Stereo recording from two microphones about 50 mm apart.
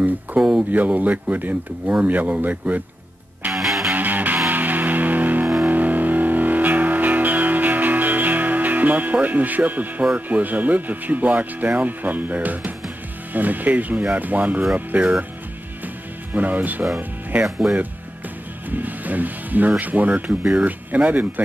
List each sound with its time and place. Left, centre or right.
0.4 s speech: centre
0.7 s speech: right
3.5 s music: centre
3.9 s music: right
10.1 s speech: right
16.3 s speech: right
17.6 s speech: centre
18.7 s speech: right